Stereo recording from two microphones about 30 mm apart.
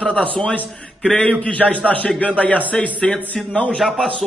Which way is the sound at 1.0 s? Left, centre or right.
Left.